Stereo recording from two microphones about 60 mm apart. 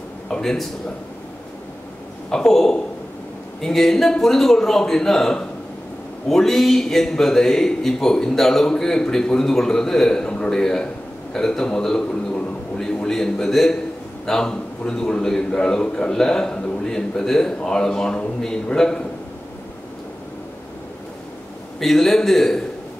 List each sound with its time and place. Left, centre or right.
0.3 s a man's voice: centre
2.2 s a man's voice: centre
12.1 s a sound: centre
12.7 s a man's voice: centre
21.7 s a man's voice: centre